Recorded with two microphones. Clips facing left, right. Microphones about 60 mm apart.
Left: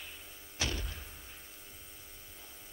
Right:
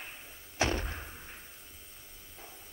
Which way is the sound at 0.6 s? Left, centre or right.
Right.